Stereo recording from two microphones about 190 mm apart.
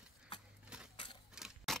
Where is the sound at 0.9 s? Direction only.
25° left (ahead or behind).